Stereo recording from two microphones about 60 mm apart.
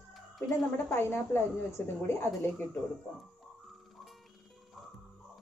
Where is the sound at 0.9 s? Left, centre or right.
Left.